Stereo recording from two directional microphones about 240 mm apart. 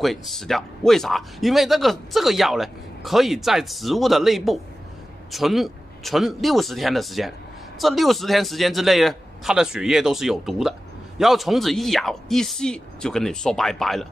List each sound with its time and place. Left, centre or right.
0.0 s speech: centre